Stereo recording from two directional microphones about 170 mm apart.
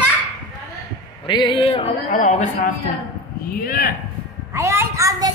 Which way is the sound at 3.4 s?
60° left (ahead or behind).